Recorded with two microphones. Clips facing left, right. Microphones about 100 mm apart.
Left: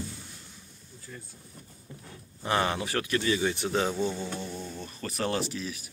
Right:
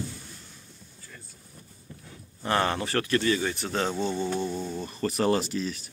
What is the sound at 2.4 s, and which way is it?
Speech, 10° left (ahead or behind).